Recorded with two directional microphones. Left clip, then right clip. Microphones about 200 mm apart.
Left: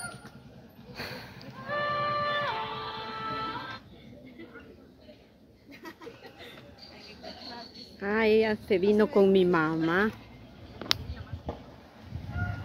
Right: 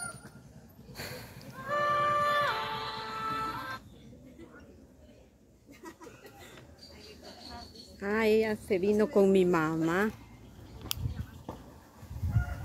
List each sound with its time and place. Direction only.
0.9 s a sound: centre (ahead or behind)
1.7 s music: 40° right (ahead or behind)
8.0 s a woman's voice: 5° right (ahead or behind)
9.1 s a woman's voice: 5° right (ahead or behind)